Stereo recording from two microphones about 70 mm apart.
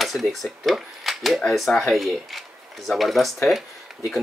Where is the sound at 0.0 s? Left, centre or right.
Centre.